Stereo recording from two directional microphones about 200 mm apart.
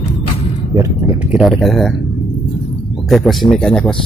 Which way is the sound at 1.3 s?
Centre (ahead or behind).